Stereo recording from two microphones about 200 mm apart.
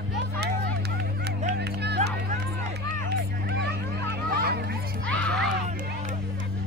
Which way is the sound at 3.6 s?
55° right (ahead or behind).